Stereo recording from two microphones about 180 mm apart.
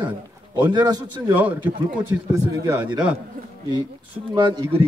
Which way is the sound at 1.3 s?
10° right (ahead or behind).